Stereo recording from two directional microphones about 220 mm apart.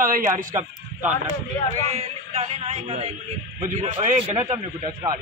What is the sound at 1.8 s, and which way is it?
A man's voice, 25° right (ahead or behind).